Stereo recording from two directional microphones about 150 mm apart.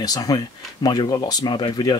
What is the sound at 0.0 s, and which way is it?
Speech, 25° left (ahead or behind).